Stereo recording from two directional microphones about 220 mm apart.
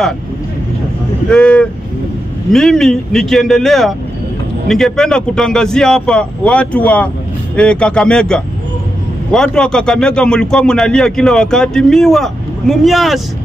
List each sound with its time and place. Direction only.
1.3 s speech: 5° left (ahead or behind)